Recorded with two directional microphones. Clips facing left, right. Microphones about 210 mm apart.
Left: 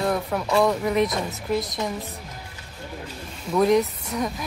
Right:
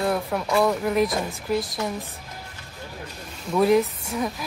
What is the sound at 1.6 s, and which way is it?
Speech, 20° left (ahead or behind).